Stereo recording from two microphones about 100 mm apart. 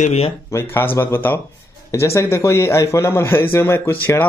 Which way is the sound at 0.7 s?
20° left (ahead or behind).